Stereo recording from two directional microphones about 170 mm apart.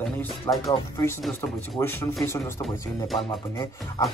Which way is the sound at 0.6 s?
20° left (ahead or behind).